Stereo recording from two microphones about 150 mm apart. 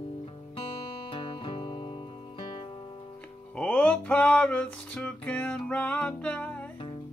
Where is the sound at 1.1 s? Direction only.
35° left (ahead or behind).